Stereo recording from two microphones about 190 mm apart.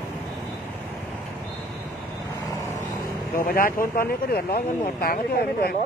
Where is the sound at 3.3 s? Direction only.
50° left (ahead or behind).